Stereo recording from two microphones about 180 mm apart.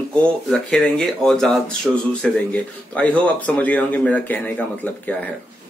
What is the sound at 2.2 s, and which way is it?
Speech, 10° left (ahead or behind).